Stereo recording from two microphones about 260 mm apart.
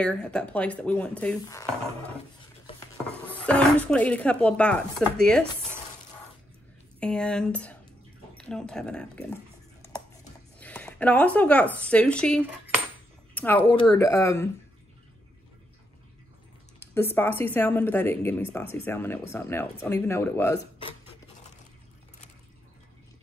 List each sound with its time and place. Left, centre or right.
0.0 s speech: centre
3.1 s speech: centre
7.0 s speech: centre
8.4 s a sound: centre
10.6 s a woman's voice: centre
16.9 s a woman's voice: centre
21.1 s a sound: left